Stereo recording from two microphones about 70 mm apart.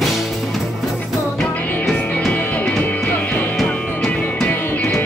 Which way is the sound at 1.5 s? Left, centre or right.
Left.